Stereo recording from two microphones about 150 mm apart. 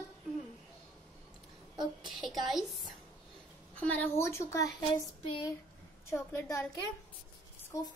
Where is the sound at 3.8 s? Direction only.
10° left (ahead or behind).